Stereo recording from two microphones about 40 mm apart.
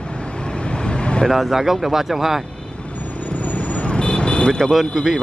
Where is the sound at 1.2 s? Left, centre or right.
Centre.